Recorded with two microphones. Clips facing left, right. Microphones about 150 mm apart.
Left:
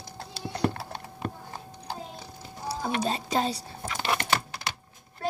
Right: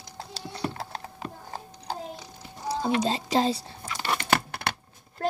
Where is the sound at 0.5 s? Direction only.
55° left (ahead or behind).